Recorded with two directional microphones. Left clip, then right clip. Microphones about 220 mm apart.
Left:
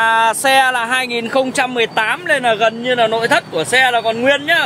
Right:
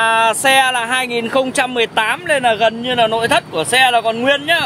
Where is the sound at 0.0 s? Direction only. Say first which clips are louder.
Even; 5° left (ahead or behind).